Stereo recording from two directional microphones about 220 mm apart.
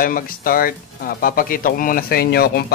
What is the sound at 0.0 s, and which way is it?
Speech, 40° left (ahead or behind).